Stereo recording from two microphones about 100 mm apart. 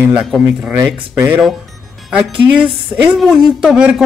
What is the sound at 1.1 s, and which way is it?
Music, 20° right (ahead or behind).